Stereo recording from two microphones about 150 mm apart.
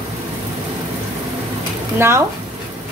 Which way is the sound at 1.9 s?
15° right (ahead or behind).